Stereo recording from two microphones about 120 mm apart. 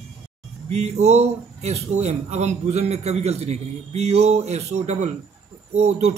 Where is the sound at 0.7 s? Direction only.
65° right (ahead or behind).